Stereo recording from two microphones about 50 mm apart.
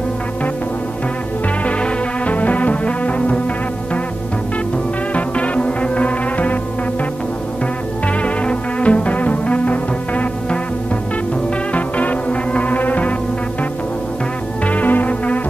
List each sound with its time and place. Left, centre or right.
1.6 s music: left
5.1 s music: left
8.2 s music: left
11.7 s music: left
14.7 s music: left